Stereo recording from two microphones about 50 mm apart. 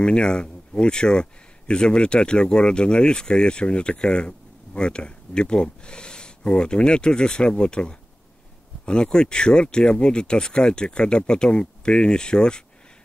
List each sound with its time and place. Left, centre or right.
0.0 s speech: centre